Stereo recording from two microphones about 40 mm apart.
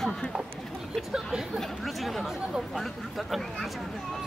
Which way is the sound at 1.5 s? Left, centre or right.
Centre.